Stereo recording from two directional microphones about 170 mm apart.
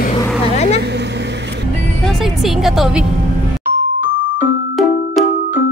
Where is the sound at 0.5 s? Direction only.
40° left (ahead or behind).